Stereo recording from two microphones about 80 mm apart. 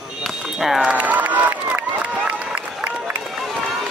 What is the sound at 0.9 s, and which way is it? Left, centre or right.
Crowd, centre.